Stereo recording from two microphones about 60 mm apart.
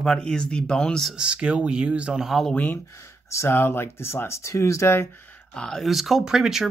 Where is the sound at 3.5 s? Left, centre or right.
Left.